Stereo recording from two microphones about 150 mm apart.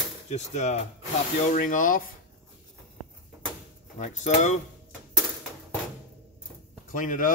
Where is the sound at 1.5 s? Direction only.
60° left (ahead or behind).